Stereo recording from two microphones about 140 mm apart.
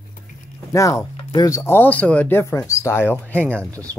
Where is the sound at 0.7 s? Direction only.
25° left (ahead or behind).